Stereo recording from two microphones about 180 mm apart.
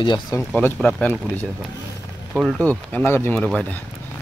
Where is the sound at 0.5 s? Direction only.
5° left (ahead or behind).